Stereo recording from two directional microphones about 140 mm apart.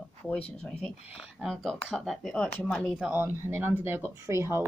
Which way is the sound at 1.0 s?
5° right (ahead or behind).